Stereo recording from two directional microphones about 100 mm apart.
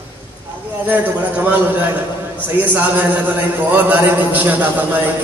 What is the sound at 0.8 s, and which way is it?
A man's voice, 15° right (ahead or behind).